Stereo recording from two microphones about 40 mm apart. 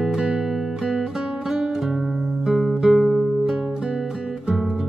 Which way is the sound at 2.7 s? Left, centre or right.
Centre.